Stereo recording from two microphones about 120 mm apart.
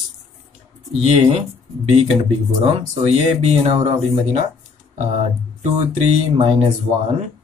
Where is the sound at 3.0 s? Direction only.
65° right (ahead or behind).